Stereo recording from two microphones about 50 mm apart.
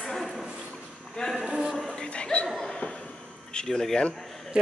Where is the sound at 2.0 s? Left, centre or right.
Left.